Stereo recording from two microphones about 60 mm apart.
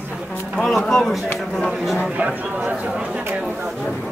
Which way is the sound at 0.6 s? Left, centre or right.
Centre.